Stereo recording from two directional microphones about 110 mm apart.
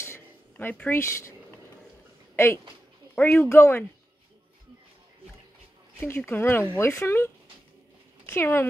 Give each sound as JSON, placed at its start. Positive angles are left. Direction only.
{"t": 0.0, "sound": "a sound", "side_deg": 20}
{"t": 2.3, "sound": "speech", "side_deg": 25}
{"t": 5.9, "sound": "speech", "side_deg": 20}
{"t": 8.3, "sound": "speech", "side_deg": 20}